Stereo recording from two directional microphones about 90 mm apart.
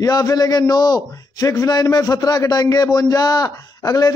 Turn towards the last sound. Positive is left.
turn(degrees=40)  # may be behind; listen again after turning